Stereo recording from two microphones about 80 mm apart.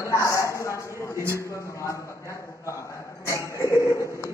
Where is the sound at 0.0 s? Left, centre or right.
Left.